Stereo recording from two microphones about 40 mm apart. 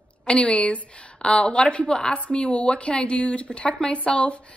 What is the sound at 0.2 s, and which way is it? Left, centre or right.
Speech, left.